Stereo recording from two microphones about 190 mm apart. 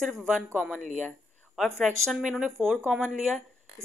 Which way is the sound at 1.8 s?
Centre (ahead or behind).